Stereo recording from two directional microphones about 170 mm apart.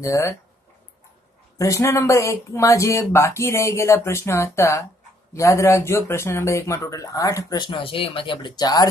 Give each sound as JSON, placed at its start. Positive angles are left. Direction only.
{"t": 0.0, "sound": "speech", "side_deg": 15}
{"t": 1.6, "sound": "speech", "side_deg": 20}